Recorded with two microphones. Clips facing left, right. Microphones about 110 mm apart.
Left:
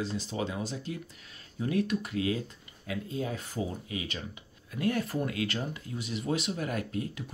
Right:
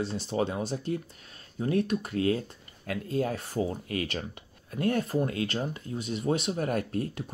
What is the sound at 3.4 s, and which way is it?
Speech, 40° right (ahead or behind).